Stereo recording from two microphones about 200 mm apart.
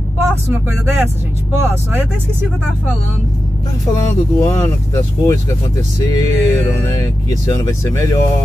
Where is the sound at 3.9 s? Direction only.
15° left (ahead or behind).